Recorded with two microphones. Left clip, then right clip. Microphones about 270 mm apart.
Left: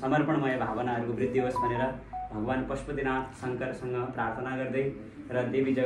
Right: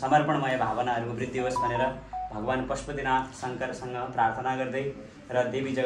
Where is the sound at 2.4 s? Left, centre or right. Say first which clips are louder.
Right 3 dB; right.